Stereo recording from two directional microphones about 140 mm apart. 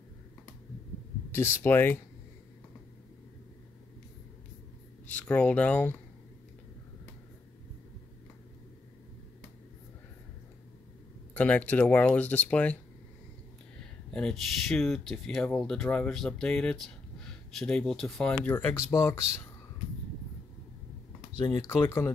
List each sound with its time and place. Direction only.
1.3 s speech: 20° left (ahead or behind)
5.0 s speech: 10° left (ahead or behind)
11.3 s speech: 10° left (ahead or behind)
14.1 s speech: 5° left (ahead or behind); by 19.4 s 20° left (ahead or behind)
21.4 s speech: 20° left (ahead or behind)